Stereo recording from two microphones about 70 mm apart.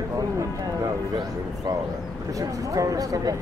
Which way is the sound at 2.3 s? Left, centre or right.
Right.